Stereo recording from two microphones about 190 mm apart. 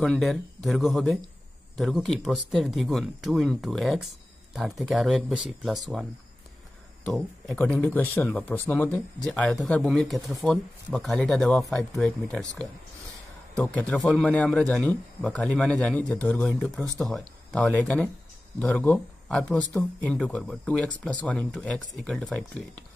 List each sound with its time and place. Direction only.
0.0 s speech: centre (ahead or behind)
7.1 s speech: 5° left (ahead or behind)
16.8 s speech: 15° right (ahead or behind)
17.1 s speech: 5° left (ahead or behind)